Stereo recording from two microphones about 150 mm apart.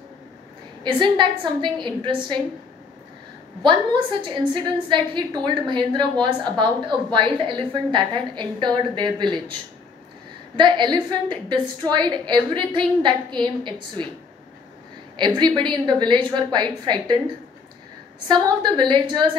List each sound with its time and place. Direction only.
0.8 s a woman's voice: 30° right (ahead or behind)
3.6 s a woman's voice: 35° right (ahead or behind)
15.1 s a woman's voice: 30° right (ahead or behind)
18.3 s a woman's voice: 30° right (ahead or behind)